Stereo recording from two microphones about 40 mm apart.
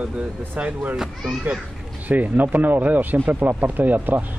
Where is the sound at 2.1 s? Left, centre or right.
Right.